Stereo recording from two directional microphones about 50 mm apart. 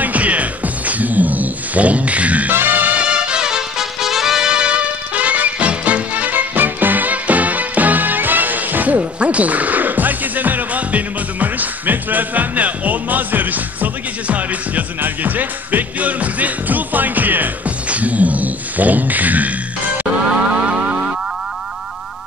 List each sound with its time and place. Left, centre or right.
0.0 s music: right
2.5 s music: right
3.0 s music: right
17.8 s a sound: right
20.2 s music: right